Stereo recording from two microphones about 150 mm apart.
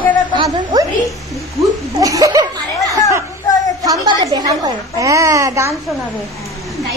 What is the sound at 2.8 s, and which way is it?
Chatter, 20° left (ahead or behind).